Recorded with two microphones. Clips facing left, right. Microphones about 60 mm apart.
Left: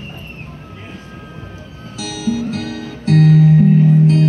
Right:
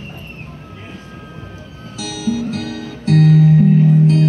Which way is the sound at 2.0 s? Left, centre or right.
Left.